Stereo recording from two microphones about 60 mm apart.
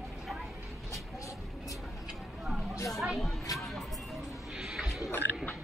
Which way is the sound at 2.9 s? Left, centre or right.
Centre.